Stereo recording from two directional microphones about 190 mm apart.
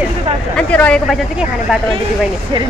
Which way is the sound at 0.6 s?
5° left (ahead or behind).